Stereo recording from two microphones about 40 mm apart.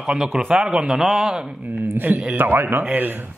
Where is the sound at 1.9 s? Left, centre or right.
Right.